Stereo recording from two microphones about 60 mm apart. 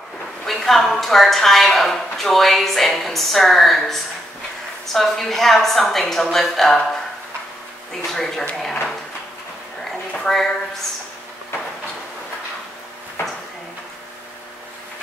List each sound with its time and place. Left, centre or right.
0.5 s a woman's voice: centre
8.0 s speech: centre
10.1 s a woman's voice: centre